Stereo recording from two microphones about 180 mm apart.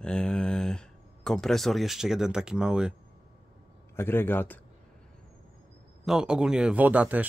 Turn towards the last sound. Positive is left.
turn(degrees=-10)  # may be behind; listen again after turning